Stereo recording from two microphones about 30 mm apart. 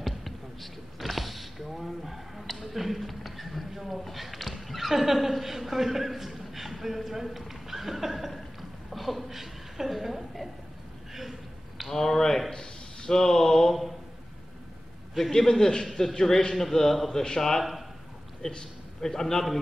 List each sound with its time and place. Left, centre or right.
0.0 s a sound: centre
2.4 s a woman's voice: centre
11.9 s speech: centre
15.3 s a man's voice: centre
17.1 s a man's voice: left
17.4 s speech: centre
18.4 s a man's voice: left